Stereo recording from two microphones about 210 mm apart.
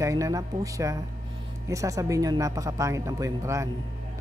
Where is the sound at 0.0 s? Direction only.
15° right (ahead or behind).